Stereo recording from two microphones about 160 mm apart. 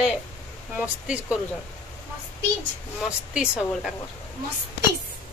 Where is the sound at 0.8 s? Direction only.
5° right (ahead or behind).